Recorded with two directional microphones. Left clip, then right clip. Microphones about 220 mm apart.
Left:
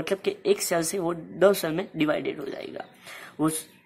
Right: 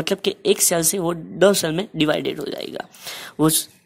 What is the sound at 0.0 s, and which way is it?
Speech, 40° right (ahead or behind).